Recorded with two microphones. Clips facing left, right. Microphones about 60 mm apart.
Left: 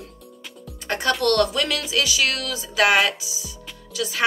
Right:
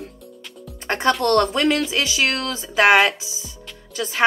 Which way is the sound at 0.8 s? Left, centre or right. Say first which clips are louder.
Right 2 dB; right.